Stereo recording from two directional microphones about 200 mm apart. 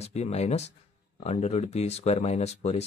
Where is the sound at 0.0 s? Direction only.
30° left (ahead or behind).